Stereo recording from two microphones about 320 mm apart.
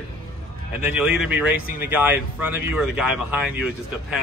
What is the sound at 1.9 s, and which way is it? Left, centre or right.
Speech, centre.